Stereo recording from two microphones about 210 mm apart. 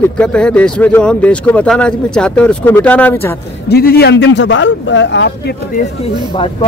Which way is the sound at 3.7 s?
50° left (ahead or behind).